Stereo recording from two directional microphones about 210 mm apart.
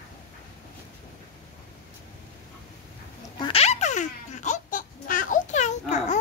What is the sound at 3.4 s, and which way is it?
Baby laughter, 30° left (ahead or behind).